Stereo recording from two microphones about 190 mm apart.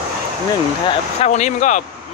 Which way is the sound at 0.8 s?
35° left (ahead or behind).